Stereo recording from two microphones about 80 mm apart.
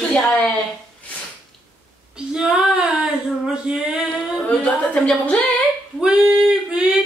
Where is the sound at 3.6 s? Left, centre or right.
Centre.